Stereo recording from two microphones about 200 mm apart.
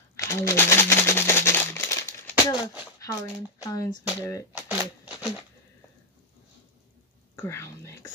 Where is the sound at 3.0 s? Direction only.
15° left (ahead or behind).